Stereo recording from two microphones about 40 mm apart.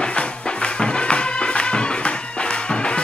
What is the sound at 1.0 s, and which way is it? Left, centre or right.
Music, left.